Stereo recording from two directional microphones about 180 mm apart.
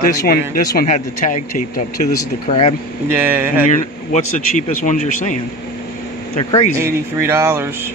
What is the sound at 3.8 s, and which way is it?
Speech, 45° left (ahead or behind).